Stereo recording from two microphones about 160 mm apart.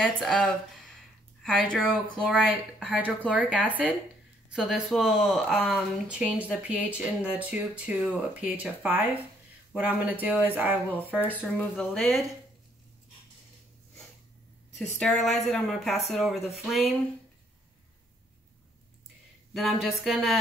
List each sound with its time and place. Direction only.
0.0 s speech: centre (ahead or behind)
2.8 s speech: 5° right (ahead or behind)
11.5 s speech: centre (ahead or behind)
14.8 s speech: 5° left (ahead or behind)
16.3 s speech: 40° left (ahead or behind)
19.5 s speech: centre (ahead or behind)